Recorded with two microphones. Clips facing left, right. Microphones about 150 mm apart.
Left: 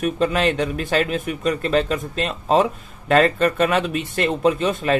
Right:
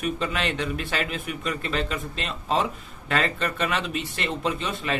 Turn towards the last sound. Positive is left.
turn(degrees=45)  # may be behind; listen again after turning